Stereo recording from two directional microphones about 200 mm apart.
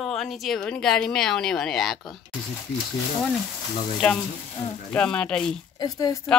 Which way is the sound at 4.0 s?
5° left (ahead or behind).